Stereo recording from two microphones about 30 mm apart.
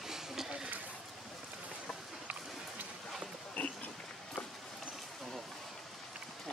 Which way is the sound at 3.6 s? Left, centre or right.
Left.